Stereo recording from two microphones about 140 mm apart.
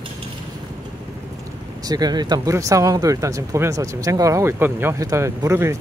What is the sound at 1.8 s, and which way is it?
Speech, 30° right (ahead or behind).